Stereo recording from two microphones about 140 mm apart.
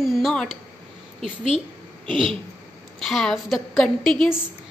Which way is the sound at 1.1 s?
40° right (ahead or behind).